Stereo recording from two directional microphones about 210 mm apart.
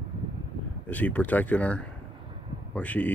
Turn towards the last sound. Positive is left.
turn(degrees=5)  # may be behind; listen again after turning